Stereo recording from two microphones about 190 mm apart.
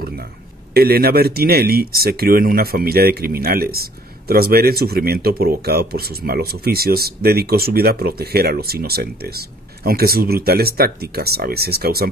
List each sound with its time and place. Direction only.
0.7 s speech: 55° right (ahead or behind)